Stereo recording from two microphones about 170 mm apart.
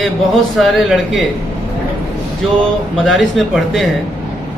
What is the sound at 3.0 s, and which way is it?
Speech, centre (ahead or behind).